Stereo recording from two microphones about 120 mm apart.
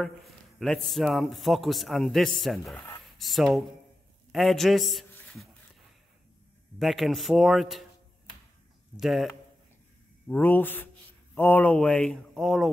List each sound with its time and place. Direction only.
0.6 s a man's voice: centre (ahead or behind)
6.8 s a man's voice: centre (ahead or behind)
8.9 s a man's voice: 5° right (ahead or behind)
10.2 s speech: 15° left (ahead or behind)